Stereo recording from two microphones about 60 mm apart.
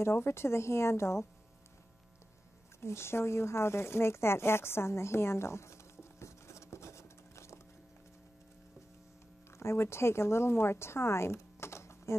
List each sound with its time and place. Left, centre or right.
0.0 s speech: left
2.8 s a sound: left
9.6 s speech: left